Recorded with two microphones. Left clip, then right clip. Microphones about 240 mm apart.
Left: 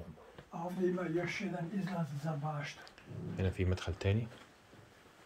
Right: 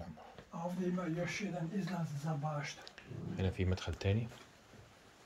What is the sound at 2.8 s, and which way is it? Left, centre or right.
Speech, centre.